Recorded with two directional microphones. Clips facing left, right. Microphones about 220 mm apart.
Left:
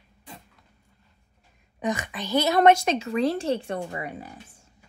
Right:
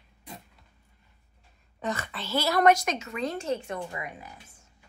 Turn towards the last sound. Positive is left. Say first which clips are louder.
# left 4 dB
turn(degrees=30)  # may be behind; listen again after turning